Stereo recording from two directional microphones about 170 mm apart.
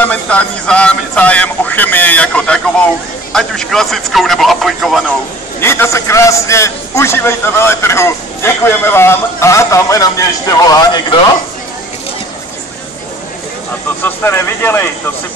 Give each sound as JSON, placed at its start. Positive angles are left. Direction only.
{"t": 0.0, "sound": "a man's voice", "side_deg": 10}
{"t": 5.6, "sound": "a man's voice", "side_deg": 15}
{"t": 14.0, "sound": "a man's voice", "side_deg": 15}